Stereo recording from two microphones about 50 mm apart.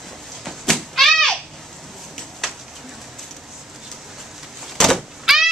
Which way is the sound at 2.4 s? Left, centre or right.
Centre.